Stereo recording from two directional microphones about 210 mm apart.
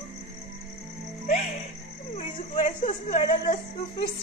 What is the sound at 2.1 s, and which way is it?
Speech, 40° left (ahead or behind).